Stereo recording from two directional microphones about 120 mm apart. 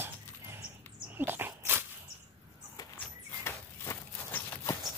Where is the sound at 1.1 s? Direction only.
15° right (ahead or behind).